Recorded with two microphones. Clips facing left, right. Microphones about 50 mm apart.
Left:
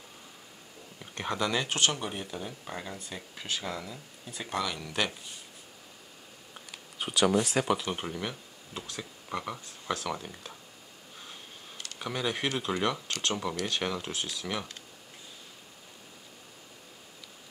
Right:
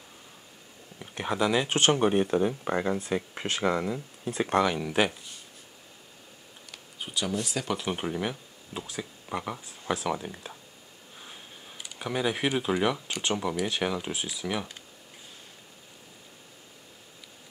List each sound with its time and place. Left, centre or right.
0.9 s speech: centre
1.7 s speech: right
4.6 s speech: right
7.0 s speech: left
7.8 s speech: centre
11.8 s speech: centre